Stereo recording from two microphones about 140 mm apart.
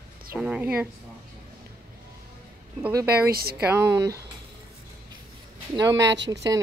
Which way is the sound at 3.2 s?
90° right.